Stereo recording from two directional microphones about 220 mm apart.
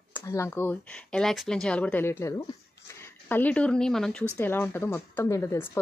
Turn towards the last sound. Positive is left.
turn(degrees=10)  # may be behind; listen again after turning